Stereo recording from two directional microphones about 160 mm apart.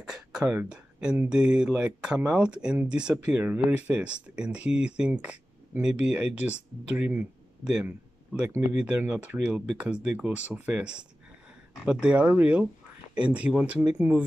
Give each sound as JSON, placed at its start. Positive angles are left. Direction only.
{"t": 0.0, "sound": "speech", "side_deg": -5}